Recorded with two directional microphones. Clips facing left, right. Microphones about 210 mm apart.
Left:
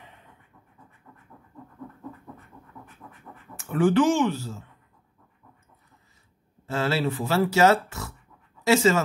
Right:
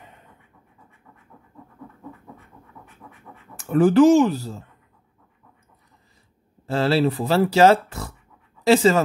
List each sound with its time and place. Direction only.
3.0 s scratch: 5° right (ahead or behind)
3.7 s speech: 40° right (ahead or behind)
6.7 s speech: 35° right (ahead or behind)